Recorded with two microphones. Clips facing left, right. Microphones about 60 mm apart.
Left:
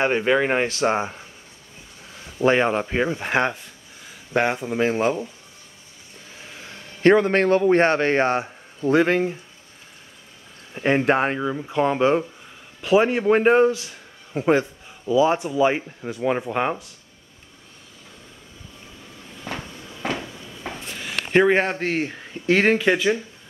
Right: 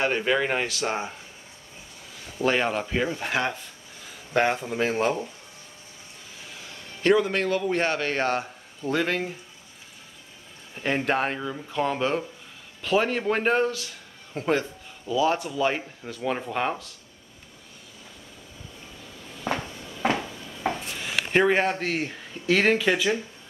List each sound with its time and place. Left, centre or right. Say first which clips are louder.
0.0 s a man's voice: left 4 dB; centre
2.4 s a man's voice: left 5 dB; left
4.3 s speech: left 2 dB; centre
6.6 s a man's voice: left 8 dB; left
10.7 s a man's voice: left 6 dB; left
19.4 s a sound: right 4 dB; right
20.6 s a sound: right 4 dB; centre
21.5 s speech: left 3 dB; centre